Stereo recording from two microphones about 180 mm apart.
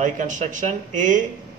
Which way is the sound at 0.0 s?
45° right (ahead or behind).